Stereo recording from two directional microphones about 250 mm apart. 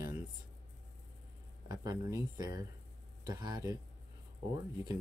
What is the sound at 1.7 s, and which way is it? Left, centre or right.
Speech, centre.